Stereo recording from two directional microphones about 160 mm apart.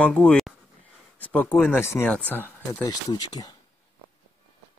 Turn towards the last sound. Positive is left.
turn(degrees=25)  # may be behind; listen again after turning